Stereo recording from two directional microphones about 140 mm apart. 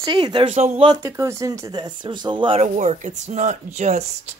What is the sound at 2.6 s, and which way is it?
Speech, 60° right (ahead or behind).